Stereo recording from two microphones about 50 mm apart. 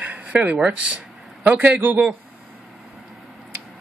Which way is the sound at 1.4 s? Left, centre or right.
Right.